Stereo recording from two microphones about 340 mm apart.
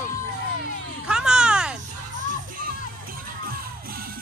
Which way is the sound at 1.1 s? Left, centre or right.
Centre.